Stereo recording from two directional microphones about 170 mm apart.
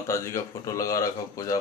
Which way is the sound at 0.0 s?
15° left (ahead or behind).